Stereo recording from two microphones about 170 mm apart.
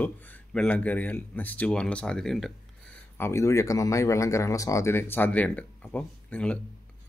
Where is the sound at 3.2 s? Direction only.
15° left (ahead or behind).